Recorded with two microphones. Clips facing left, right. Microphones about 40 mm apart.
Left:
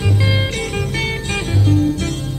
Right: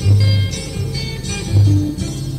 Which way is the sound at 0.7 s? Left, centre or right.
Left.